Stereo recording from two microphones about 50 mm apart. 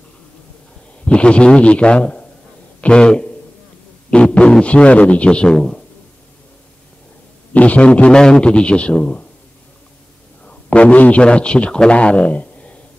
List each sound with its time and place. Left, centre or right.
1.0 s a man's voice: left
7.5 s a man's voice: left
10.4 s a man's voice: left